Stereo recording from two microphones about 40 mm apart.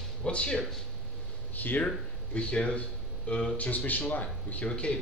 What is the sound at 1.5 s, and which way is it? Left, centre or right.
Speech, left.